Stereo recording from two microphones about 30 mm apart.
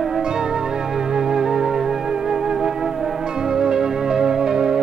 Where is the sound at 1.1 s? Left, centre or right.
Right.